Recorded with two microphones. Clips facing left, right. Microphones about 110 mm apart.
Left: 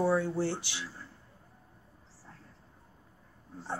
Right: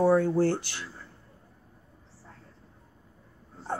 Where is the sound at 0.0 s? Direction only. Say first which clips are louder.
Right 6 dB; 45° right (ahead or behind).